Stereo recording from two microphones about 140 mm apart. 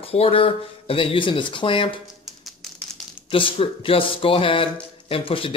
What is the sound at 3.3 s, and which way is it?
Speech, 40° left (ahead or behind).